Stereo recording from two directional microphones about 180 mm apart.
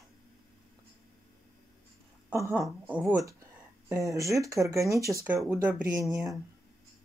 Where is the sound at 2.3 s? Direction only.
15° right (ahead or behind).